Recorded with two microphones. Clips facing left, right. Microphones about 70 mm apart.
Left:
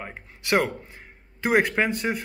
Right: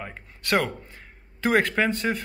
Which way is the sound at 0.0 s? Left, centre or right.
Centre.